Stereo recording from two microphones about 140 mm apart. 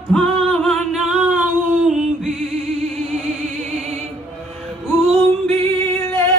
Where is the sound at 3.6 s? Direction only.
50° right (ahead or behind).